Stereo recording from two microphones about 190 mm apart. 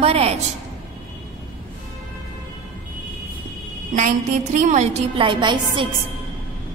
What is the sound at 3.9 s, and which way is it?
A woman's voice, 40° right (ahead or behind).